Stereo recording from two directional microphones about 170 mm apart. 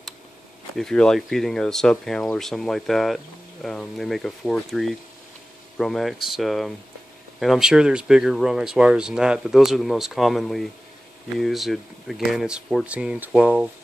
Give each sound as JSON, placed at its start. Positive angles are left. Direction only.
{"t": 0.7, "sound": "speech", "side_deg": 5}